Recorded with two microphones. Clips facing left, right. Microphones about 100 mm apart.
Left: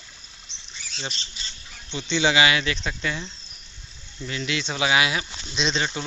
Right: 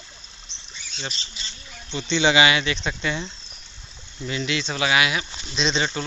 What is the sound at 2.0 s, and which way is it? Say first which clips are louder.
Speech: right 2 dB; 5° left (ahead or behind).